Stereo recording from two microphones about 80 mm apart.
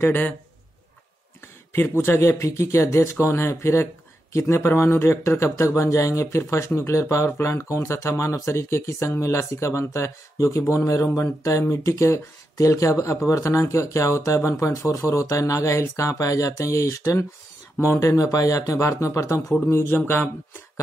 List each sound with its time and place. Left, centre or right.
0.0 s a man's voice: left
1.7 s speech: left